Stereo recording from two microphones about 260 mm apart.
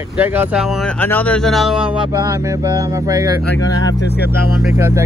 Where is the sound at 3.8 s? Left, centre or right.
Left.